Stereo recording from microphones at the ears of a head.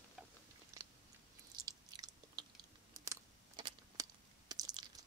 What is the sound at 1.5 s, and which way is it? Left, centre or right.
Chewing, right.